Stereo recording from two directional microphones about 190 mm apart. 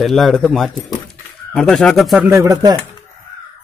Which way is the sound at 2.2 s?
15° right (ahead or behind).